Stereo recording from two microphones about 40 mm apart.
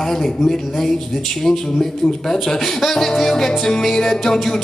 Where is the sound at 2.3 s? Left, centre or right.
Centre.